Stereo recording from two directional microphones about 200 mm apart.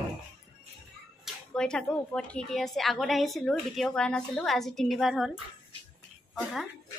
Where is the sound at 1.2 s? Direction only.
5° left (ahead or behind).